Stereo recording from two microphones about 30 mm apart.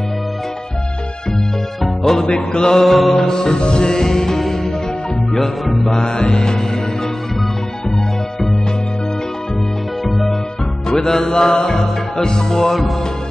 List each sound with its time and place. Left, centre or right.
2.0 s mantra: centre
2.5 s music: left
2.8 s mantra: centre
3.3 s music: left
5.4 s music: centre
5.9 s music: left
10.9 s music: left